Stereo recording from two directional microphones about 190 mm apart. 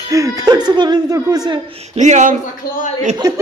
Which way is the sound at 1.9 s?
40° right (ahead or behind).